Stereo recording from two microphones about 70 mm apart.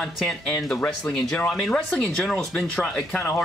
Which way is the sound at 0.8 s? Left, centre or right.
Left.